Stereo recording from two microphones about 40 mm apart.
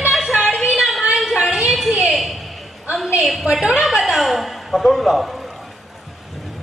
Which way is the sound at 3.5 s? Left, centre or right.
Centre.